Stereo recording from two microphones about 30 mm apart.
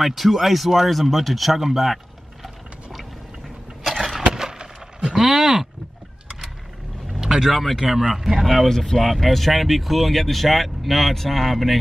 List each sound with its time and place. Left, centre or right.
0.0 s speech: centre
2.4 s a sound: centre
4.4 s wood: right
5.1 s speech: centre
7.1 s vehicle: right
7.5 s speech: centre
8.0 s speech: centre
8.4 s speech: centre